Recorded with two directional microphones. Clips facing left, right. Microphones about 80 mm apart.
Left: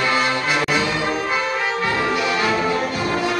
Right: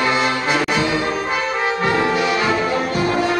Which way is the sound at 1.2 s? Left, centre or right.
Right.